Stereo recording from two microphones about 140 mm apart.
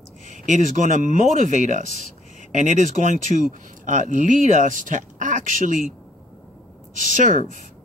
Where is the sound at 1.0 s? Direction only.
60° right (ahead or behind).